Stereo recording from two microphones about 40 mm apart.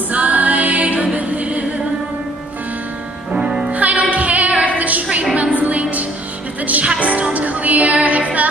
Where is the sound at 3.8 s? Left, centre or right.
Right.